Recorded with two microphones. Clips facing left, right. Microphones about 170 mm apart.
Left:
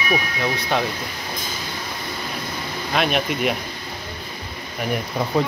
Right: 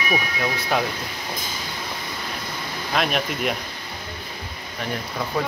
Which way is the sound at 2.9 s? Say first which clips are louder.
Left 2 dB; centre (ahead or behind).